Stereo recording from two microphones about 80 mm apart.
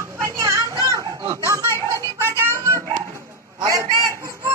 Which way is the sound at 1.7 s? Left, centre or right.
Right.